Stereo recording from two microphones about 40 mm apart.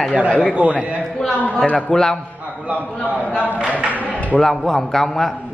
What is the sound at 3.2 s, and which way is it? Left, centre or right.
Speech, left.